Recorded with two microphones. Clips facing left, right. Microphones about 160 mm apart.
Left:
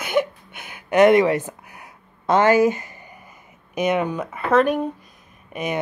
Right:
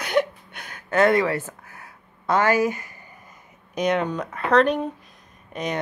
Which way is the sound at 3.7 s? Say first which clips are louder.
Left 2 dB; 5° left (ahead or behind).